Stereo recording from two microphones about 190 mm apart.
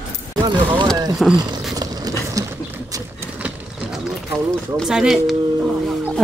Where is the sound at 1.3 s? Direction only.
20° right (ahead or behind).